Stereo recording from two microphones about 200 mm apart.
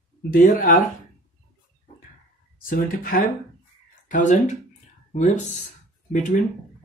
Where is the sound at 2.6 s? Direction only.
45° left (ahead or behind).